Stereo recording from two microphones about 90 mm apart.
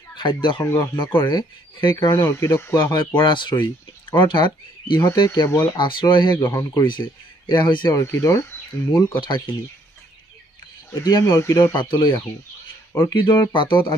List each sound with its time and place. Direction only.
0.1 s speech: 60° left (ahead or behind)
2.0 s speech: 30° left (ahead or behind)
2.9 s speech: 60° left (ahead or behind)
5.5 s speech: 30° left (ahead or behind)
5.8 s speech: 60° left (ahead or behind)
6.5 s speech: 40° left (ahead or behind)
6.9 s speech: 55° left (ahead or behind)
7.9 s speech: 35° left (ahead or behind)
9.1 s speech: 60° left (ahead or behind)
10.9 s speech: 45° left (ahead or behind)
11.7 s speech: 60° left (ahead or behind)